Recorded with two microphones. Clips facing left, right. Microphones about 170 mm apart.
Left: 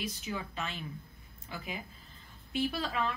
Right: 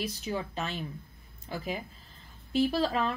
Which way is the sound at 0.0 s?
35° right (ahead or behind).